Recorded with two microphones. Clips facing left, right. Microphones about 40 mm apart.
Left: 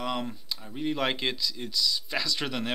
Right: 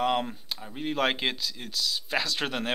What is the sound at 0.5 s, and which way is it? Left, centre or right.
Speech, centre.